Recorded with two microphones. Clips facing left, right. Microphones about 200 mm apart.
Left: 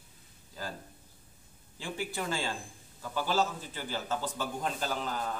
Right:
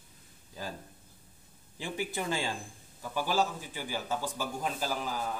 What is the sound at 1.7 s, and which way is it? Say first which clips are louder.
A man's voice: right 1 dB; 15° right (ahead or behind).